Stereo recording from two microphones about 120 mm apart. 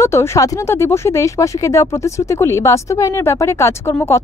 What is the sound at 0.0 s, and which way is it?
Speech, 20° left (ahead or behind).